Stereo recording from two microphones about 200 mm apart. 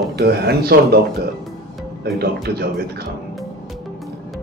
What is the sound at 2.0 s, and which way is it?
Speech, 50° right (ahead or behind).